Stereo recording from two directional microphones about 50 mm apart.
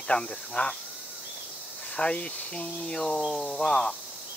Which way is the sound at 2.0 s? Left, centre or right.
Left.